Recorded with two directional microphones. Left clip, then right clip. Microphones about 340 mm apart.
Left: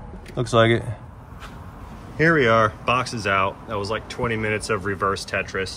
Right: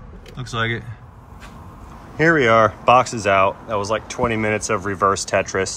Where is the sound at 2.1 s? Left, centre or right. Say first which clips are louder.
Right 3 dB; centre.